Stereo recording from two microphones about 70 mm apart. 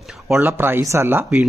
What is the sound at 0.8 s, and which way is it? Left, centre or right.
Speech, right.